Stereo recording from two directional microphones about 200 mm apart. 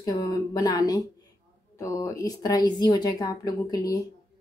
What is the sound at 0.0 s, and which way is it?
Speech, 20° left (ahead or behind).